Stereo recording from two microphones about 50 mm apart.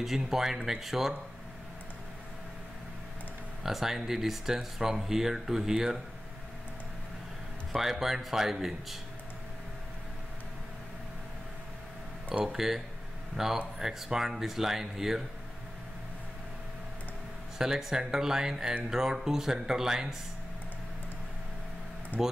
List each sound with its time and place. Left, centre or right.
0.0 s speech: centre
3.6 s speech: centre
7.7 s speech: centre
12.5 s speech: centre
17.6 s speech: centre
22.2 s speech: right